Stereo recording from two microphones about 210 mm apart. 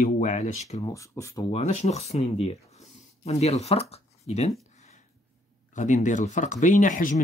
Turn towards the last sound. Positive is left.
turn(degrees=40)  # may be behind; listen again after turning